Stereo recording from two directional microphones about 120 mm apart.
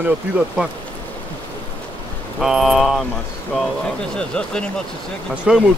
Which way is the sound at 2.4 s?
5° right (ahead or behind).